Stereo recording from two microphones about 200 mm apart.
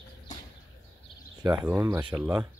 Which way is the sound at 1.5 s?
5° right (ahead or behind).